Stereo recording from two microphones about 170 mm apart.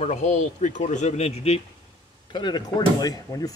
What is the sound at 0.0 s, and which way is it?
Speech, 40° left (ahead or behind).